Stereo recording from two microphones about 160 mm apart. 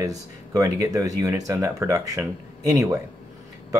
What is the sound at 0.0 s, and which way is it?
Speech, 20° right (ahead or behind).